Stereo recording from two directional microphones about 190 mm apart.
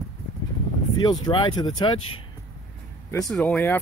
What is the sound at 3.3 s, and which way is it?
Speech, 5° left (ahead or behind).